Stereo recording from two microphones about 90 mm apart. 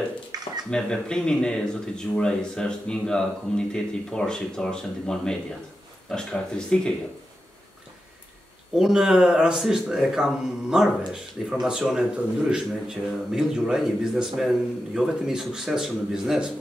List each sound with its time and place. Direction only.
0.3 s a sound: 50° right (ahead or behind)
0.7 s speech: 10° left (ahead or behind)
8.7 s a man's voice: 5° right (ahead or behind)